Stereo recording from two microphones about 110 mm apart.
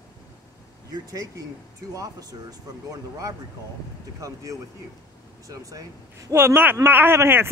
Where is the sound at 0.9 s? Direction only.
30° right (ahead or behind).